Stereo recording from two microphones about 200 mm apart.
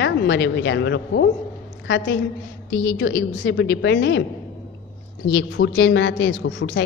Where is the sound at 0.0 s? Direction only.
60° left (ahead or behind).